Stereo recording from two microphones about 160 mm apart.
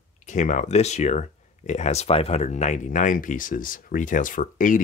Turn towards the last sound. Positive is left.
turn(degrees=55)  # may be behind; listen again after turning